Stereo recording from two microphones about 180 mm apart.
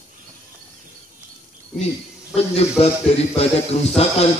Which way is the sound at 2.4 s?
35° left (ahead or behind).